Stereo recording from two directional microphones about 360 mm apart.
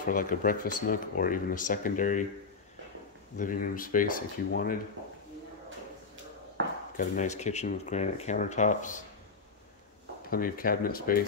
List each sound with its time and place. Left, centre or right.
0.0 s speech: left
3.3 s speech: left
7.0 s speech: centre
10.3 s speech: left